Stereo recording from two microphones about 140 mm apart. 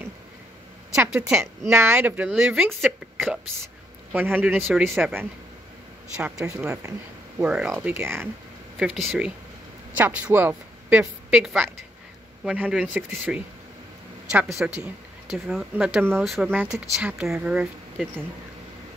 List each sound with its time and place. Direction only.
1.0 s speech: 15° right (ahead or behind)
6.4 s speech: 20° right (ahead or behind)
7.4 s speech: 5° right (ahead or behind)
8.7 s speech: centre (ahead or behind)
9.9 s speech: 10° right (ahead or behind)
14.6 s speech: 10° right (ahead or behind)
16.5 s speech: 10° right (ahead or behind)